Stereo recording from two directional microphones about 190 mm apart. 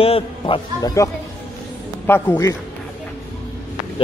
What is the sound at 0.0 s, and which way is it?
Speech, 30° left (ahead or behind).